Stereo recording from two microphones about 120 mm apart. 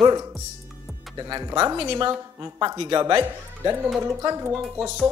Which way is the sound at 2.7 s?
40° right (ahead or behind).